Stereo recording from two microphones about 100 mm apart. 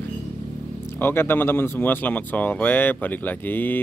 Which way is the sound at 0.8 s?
25° left (ahead or behind).